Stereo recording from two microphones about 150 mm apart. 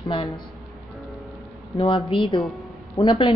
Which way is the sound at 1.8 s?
35° left (ahead or behind).